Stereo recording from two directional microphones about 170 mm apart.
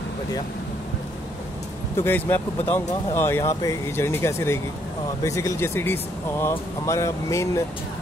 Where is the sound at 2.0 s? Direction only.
15° left (ahead or behind).